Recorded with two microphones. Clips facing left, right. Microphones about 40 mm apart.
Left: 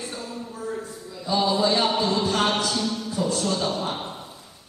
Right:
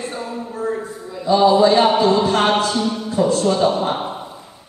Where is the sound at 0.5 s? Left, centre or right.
Right.